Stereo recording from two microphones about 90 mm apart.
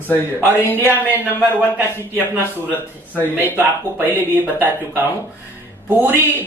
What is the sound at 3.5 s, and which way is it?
Speech, 20° right (ahead or behind).